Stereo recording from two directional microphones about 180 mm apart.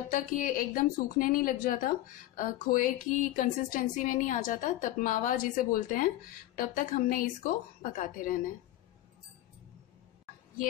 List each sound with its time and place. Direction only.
0.1 s a woman's voice: 50° left (ahead or behind)